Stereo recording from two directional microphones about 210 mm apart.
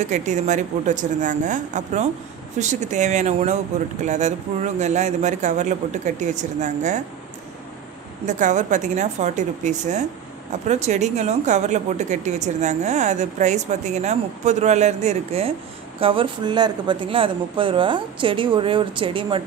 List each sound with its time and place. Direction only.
0.0 s speech: 35° right (ahead or behind)
8.3 s speech: 35° right (ahead or behind)